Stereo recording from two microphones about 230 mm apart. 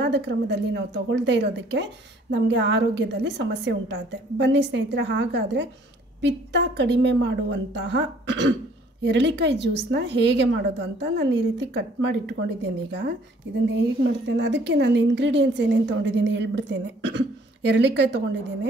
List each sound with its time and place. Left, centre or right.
0.0 s a woman's voice: right
14.2 s a woman's voice: right